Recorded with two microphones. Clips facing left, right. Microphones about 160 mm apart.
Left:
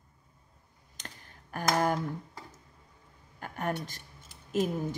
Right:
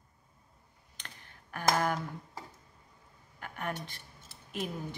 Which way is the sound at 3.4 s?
40° left (ahead or behind).